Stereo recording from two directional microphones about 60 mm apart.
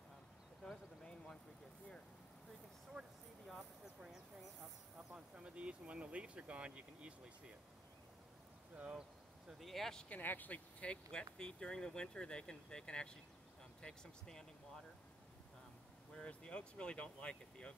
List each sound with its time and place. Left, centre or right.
1.0 s a sound: centre
3.4 s speech: centre
4.9 s speech: centre
8.7 s speech: right
9.5 s speech: centre
10.0 s speech: left; by 14.4 s centre
16.1 s speech: centre